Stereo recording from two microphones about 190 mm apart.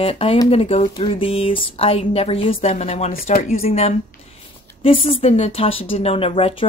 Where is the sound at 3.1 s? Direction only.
50° left (ahead or behind).